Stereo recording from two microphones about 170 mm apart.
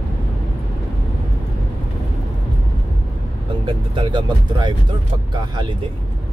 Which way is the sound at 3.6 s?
30° right (ahead or behind).